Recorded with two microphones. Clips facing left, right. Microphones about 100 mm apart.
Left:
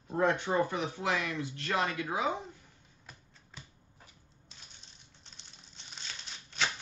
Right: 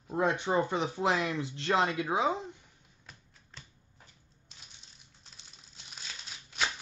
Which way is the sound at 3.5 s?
5° left (ahead or behind).